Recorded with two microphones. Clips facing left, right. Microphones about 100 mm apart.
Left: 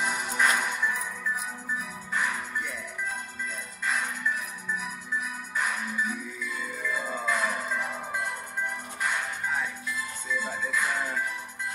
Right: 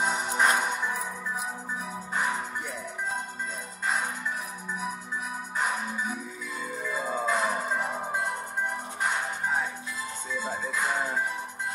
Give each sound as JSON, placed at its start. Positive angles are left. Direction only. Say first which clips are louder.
{"t": 0.0, "sound": "music", "louder": "right 2 dB", "side_deg": -30}